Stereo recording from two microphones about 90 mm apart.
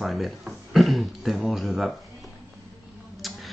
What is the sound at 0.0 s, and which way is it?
Speech, centre (ahead or behind).